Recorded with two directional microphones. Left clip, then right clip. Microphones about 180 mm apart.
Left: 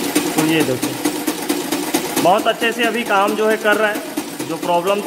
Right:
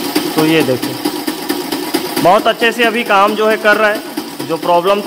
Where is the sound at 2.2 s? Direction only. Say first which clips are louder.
Right 5 dB; 45° right (ahead or behind).